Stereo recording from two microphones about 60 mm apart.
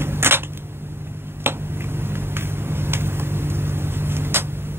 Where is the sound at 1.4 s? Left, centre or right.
Right.